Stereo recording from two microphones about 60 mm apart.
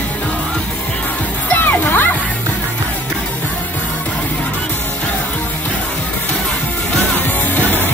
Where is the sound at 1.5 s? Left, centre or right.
Left.